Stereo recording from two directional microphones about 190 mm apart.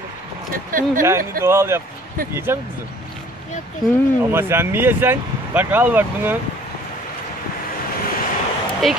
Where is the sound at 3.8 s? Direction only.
10° right (ahead or behind).